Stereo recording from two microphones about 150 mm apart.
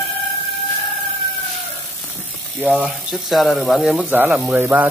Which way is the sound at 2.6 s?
10° right (ahead or behind).